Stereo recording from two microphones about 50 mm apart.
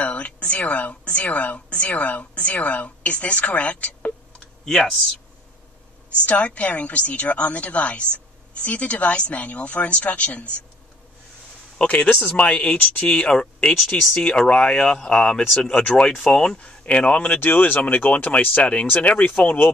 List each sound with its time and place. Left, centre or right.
0.0 s a woman's voice: left
4.6 s speech: centre
6.1 s a woman's voice: left
11.9 s a woman's voice: left
17.3 s a woman's voice: left